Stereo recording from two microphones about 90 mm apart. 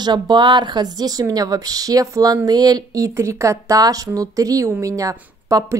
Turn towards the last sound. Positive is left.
turn(degrees=-40)  # may be behind; listen again after turning